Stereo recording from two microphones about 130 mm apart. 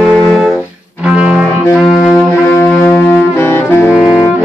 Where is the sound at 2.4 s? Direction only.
15° left (ahead or behind).